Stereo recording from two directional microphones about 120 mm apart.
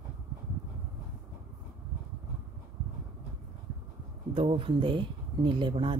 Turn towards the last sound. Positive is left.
turn(degrees=-45)  # may be behind; listen again after turning